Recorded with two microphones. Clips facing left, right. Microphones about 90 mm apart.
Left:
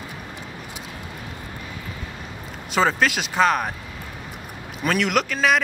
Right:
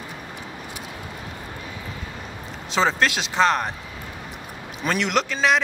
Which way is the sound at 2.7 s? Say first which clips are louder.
Left 1 dB; 5° left (ahead or behind).